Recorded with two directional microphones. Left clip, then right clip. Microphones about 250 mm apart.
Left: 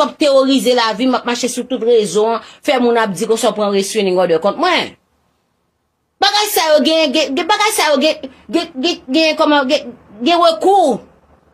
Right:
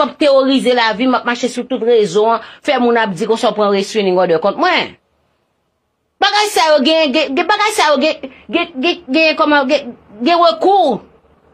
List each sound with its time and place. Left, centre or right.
0.0 s speech: centre
6.2 s speech: centre